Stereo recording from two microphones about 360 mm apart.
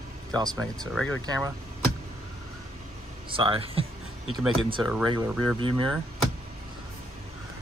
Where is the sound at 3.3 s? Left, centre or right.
Centre.